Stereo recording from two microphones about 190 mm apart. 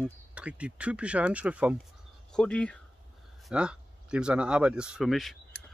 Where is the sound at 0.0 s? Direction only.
5° right (ahead or behind).